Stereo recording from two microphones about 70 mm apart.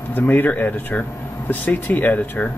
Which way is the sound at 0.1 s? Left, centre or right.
Left.